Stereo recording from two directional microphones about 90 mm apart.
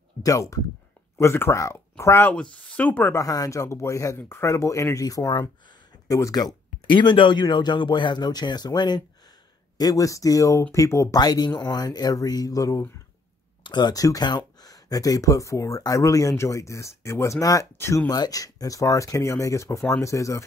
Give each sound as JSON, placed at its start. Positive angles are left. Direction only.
{"t": 0.2, "sound": "speech", "side_deg": 40}
{"t": 2.7, "sound": "speech", "side_deg": 15}
{"t": 3.2, "sound": "speech", "side_deg": 40}
{"t": 6.9, "sound": "speech", "side_deg": 60}
{"t": 9.8, "sound": "speech", "side_deg": 40}
{"t": 11.1, "sound": "speech", "side_deg": 50}
{"t": 13.7, "sound": "speech", "side_deg": 55}